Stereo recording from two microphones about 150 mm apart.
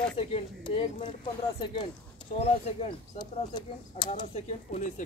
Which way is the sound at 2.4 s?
45° left (ahead or behind).